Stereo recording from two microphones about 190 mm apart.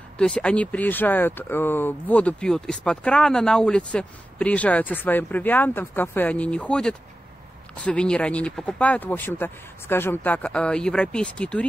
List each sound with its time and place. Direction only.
0.2 s speech: 5° left (ahead or behind)